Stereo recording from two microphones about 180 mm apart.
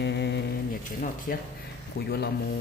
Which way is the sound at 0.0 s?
70° left (ahead or behind).